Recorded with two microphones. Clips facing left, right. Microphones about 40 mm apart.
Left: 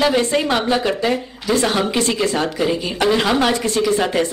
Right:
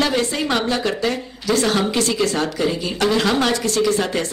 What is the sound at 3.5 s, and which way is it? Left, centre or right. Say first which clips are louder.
Speech: left 1 dB; left.